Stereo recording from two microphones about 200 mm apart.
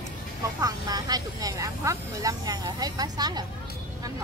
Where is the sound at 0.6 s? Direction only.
20° right (ahead or behind).